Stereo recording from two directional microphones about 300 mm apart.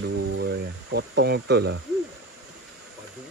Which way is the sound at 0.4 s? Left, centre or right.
Right.